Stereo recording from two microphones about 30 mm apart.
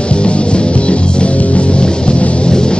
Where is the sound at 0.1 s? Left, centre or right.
Left.